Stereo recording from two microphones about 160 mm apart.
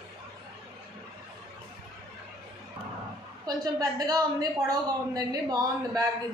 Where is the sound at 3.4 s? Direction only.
25° right (ahead or behind).